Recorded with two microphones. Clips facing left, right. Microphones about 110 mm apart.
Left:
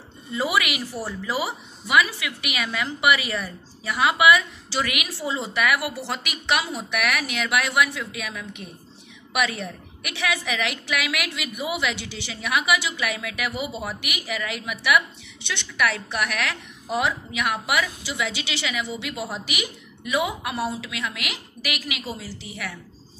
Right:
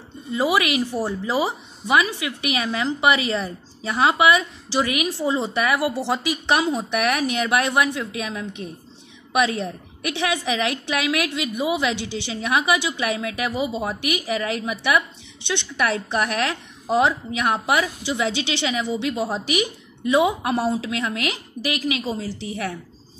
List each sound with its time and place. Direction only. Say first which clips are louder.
0.3 s a woman's voice: right 4 dB; 20° right (ahead or behind)
7.6 s a woman's voice: right 2 dB; 25° right (ahead or behind)
15.4 s a woman's voice: right 6 dB; 20° right (ahead or behind)
15.8 s a woman's voice: right 2 dB; 35° right (ahead or behind)